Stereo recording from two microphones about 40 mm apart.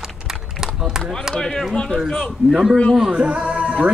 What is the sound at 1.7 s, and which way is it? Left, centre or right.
Speech, centre.